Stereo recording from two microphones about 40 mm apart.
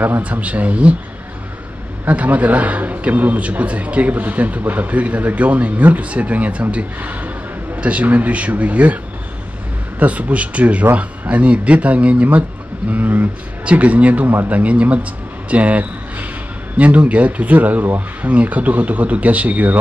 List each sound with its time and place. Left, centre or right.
0.2 s a man's voice: right
2.0 s a man's voice: right
12.9 s a man's voice: right
18.3 s a man's voice: right